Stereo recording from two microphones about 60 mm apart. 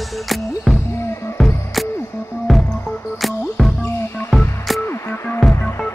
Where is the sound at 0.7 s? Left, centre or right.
Centre.